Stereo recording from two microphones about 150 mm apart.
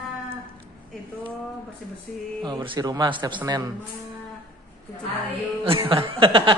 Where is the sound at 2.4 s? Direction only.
30° right (ahead or behind).